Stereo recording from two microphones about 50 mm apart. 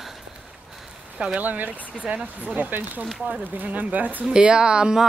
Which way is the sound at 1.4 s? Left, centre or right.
Right.